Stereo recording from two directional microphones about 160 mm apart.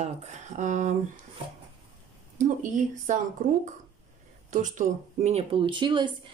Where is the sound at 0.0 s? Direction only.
50° right (ahead or behind).